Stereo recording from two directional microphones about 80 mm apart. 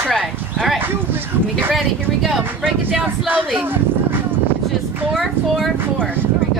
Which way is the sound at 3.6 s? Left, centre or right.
Right.